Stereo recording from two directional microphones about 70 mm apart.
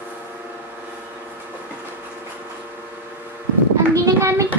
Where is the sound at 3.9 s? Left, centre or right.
Right.